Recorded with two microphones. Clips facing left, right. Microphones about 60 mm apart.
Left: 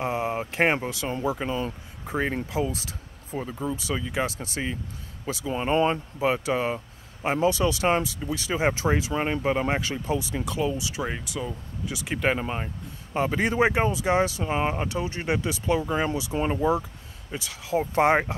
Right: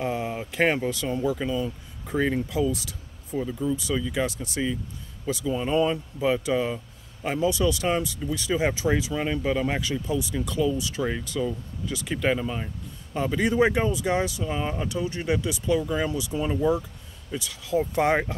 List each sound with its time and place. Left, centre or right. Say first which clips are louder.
0.0 s a sound: left 1 dB; left
0.5 s speech: right 1 dB; left
1.4 s speech: right 1 dB; left
2.0 s speech: right 2 dB; left